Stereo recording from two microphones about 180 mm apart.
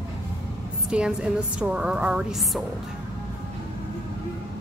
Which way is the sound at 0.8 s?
5° right (ahead or behind).